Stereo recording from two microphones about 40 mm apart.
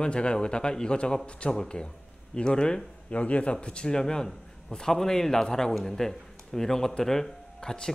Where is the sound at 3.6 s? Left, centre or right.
Left.